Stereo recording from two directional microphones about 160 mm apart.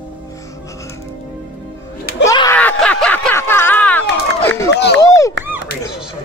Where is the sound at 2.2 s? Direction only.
20° left (ahead or behind).